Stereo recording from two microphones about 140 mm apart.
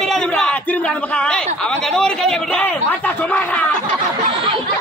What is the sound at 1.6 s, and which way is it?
A man's voice, 5° left (ahead or behind).